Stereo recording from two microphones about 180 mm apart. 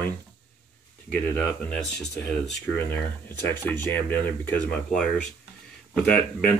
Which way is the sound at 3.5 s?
10° left (ahead or behind).